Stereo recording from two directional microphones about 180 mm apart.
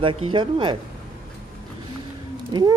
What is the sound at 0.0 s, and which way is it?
Speech, 30° right (ahead or behind).